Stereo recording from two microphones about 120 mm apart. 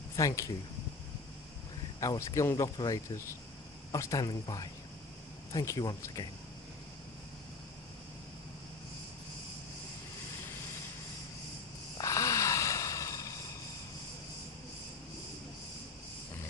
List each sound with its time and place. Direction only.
0.1 s speech: 25° left (ahead or behind)
2.0 s speech: 25° left (ahead or behind)
12.0 s a sound: 25° left (ahead or behind)